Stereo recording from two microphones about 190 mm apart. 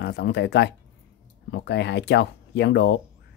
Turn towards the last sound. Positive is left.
turn(degrees=60)  # may be behind; listen again after turning